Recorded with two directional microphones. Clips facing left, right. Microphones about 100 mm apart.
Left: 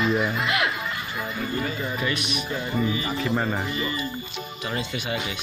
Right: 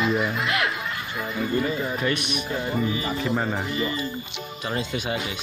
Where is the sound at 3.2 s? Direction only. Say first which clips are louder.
Left 1 dB; 5° right (ahead or behind).